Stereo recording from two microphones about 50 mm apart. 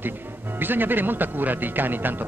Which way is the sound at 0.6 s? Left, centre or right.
Right.